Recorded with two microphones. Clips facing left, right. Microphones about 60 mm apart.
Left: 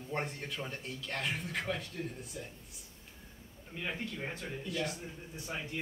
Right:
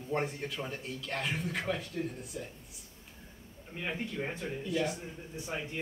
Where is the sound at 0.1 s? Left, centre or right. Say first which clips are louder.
Right 4 dB; centre.